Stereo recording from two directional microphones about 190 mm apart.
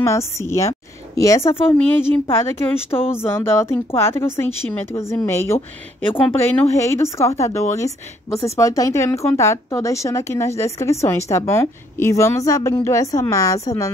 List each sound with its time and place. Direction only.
0.0 s speech: 15° left (ahead or behind)